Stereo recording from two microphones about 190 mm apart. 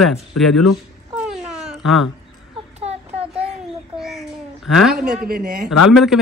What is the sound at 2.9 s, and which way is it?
Child singing, 35° right (ahead or behind).